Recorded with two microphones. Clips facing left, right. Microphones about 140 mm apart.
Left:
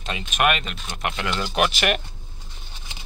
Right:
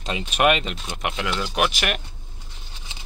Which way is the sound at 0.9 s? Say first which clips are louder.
Left 2 dB; 10° right (ahead or behind).